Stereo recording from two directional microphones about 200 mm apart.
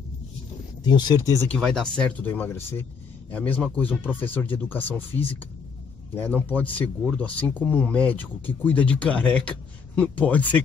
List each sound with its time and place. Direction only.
0.8 s speech: 20° left (ahead or behind)
1.4 s speech: 5° left (ahead or behind)